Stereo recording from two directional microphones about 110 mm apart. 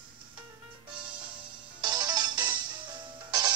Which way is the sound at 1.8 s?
40° right (ahead or behind).